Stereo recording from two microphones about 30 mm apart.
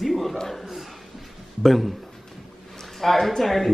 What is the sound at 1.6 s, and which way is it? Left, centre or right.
Speech, centre.